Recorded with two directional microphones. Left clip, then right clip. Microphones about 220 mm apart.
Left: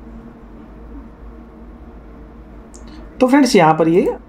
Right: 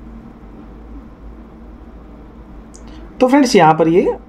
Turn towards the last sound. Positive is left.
turn(degrees=-5)  # may be behind; listen again after turning